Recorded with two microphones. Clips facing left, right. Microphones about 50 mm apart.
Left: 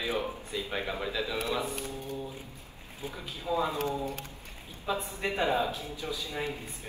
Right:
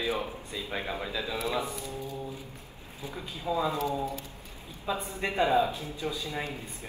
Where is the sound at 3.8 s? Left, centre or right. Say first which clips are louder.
Right 1 dB; left.